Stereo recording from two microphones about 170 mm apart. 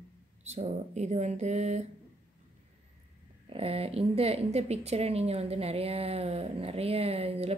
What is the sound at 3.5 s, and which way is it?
A woman's voice, 35° right (ahead or behind).